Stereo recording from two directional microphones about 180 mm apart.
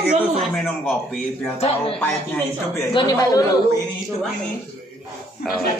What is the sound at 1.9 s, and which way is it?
Speech, 10° left (ahead or behind).